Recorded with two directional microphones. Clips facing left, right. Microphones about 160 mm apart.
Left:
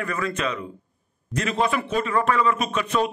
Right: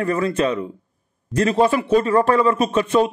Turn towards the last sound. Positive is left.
turn(degrees=-30)  # may be behind; listen again after turning